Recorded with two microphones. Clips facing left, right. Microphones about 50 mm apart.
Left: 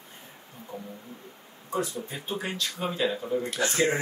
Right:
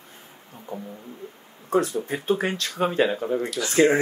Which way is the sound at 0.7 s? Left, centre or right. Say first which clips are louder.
Right 5 dB; right.